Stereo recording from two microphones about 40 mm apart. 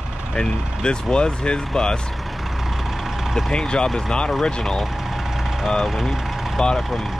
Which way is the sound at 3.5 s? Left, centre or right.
Left.